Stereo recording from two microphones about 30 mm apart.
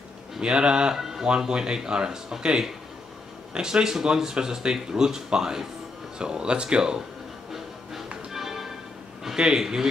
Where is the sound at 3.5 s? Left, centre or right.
Right.